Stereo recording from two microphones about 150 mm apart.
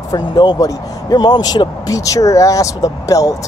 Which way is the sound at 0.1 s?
25° left (ahead or behind).